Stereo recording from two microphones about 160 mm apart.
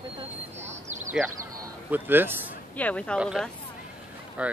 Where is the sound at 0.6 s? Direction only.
45° right (ahead or behind).